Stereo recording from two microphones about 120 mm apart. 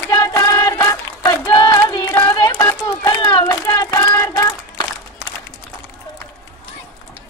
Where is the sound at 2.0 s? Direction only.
15° left (ahead or behind).